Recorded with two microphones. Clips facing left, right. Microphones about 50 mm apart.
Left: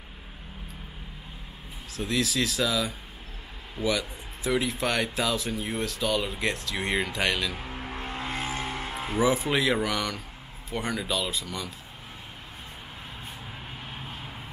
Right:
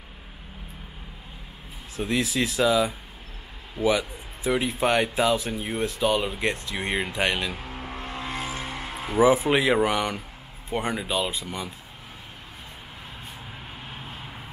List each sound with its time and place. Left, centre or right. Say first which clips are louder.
2.0 s speech: right 2 dB; right
7.5 s music: even; centre
7.8 s vehicle: even; left
9.2 s speech: right 5 dB; right